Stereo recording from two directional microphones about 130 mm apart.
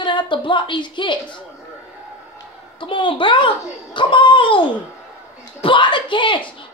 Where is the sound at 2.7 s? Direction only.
40° left (ahead or behind).